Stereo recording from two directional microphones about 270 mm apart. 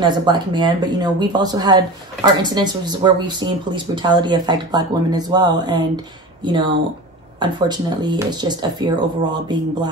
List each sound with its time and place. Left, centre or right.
0.0 s speech: centre